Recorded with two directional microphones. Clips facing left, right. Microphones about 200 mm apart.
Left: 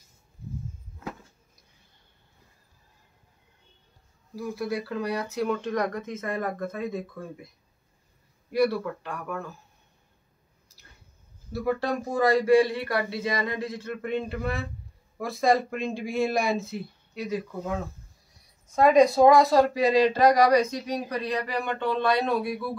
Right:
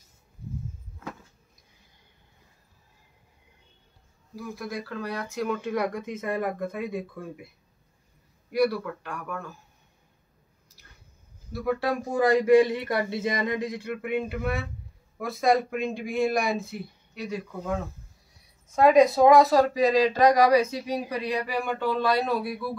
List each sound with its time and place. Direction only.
4.4 s speech: 5° left (ahead or behind)
5.5 s speech: 5° right (ahead or behind)
11.5 s speech: centre (ahead or behind)
12.1 s speech: 15° right (ahead or behind)